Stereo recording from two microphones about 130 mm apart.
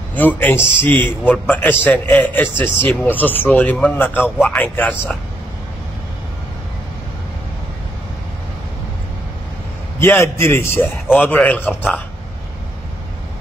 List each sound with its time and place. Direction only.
0.1 s a man's voice: 15° left (ahead or behind)
9.9 s a man's voice: 20° left (ahead or behind)